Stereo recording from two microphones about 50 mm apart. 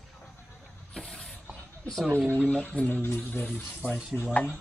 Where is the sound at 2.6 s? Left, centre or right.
Left.